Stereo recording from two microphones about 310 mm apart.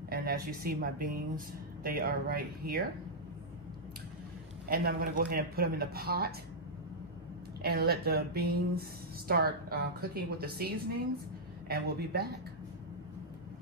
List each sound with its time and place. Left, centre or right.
0.1 s speech: right
4.6 s speech: right
7.6 s speech: right
11.7 s speech: right